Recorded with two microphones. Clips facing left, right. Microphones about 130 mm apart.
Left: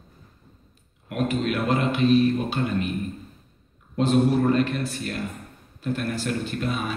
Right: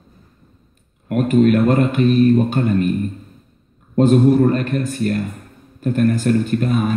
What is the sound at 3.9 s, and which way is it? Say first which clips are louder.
Speech: right 8 dB; 45° right (ahead or behind).